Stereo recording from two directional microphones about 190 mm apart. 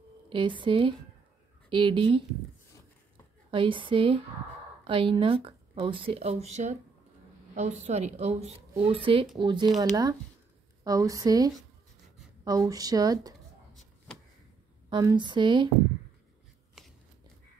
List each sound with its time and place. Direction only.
0.3 s speech: 25° right (ahead or behind)
3.5 s speech: 25° right (ahead or behind)
10.8 s speech: 20° right (ahead or behind)
14.9 s speech: 20° right (ahead or behind)